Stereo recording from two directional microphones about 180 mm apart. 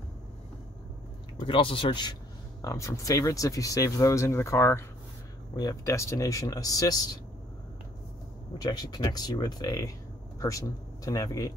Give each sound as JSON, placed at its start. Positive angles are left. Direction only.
{"t": 1.4, "sound": "speech", "side_deg": 30}
{"t": 8.5, "sound": "speech", "side_deg": 20}
{"t": 11.1, "sound": "speech", "side_deg": 20}